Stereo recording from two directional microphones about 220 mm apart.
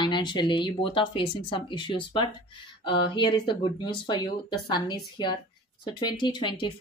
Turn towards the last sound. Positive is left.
turn(degrees=20)  # may be behind; listen again after turning